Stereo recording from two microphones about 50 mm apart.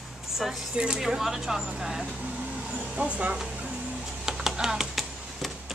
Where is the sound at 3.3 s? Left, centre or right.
Centre.